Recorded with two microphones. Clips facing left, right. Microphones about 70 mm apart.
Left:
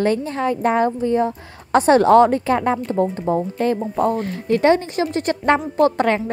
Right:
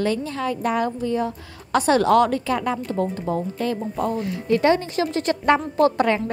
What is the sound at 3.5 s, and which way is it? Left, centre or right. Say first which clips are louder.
A woman's voice: left 5 dB; left.